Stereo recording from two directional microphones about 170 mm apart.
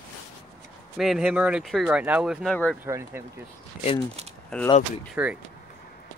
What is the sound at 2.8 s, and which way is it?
Speech, 15° right (ahead or behind).